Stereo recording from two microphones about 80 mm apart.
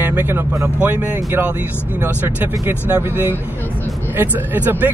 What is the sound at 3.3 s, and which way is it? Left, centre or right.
Vehicle, left.